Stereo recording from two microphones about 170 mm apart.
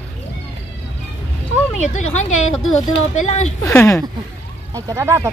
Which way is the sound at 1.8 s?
40° left (ahead or behind).